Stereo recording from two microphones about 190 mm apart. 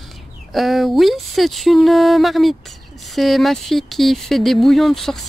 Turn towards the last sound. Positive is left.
turn(degrees=0)  # may be behind; listen again after turning